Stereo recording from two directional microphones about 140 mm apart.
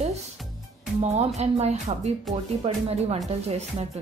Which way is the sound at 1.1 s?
50° right (ahead or behind).